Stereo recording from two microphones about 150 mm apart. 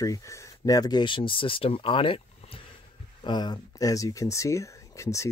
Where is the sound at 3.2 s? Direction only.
30° left (ahead or behind).